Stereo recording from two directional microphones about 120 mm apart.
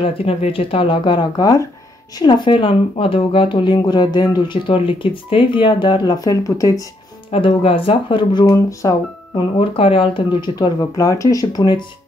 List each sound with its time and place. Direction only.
0.0 s speech: 55° left (ahead or behind); by 6.9 s 30° left (ahead or behind)
7.2 s speech: 50° left (ahead or behind)
8.5 s speech: 25° left (ahead or behind)
9.3 s speech: 50° left (ahead or behind)
10.5 s speech: 35° left (ahead or behind)